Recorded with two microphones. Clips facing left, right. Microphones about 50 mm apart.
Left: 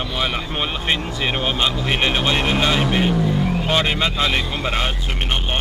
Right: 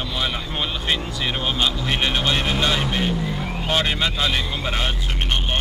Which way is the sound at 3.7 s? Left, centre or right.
Centre.